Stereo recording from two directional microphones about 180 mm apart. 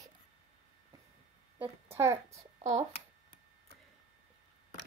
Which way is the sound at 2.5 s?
35° right (ahead or behind).